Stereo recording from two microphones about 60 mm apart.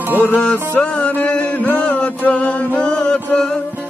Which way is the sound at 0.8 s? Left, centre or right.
Centre.